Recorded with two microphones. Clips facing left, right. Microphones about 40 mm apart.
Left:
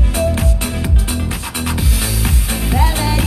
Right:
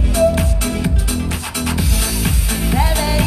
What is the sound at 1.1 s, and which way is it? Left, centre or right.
Music, left.